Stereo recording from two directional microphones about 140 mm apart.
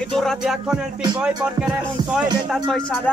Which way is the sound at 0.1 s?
Centre (ahead or behind).